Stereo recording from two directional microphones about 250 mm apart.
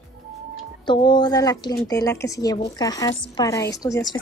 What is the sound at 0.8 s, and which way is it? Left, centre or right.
Speech, centre.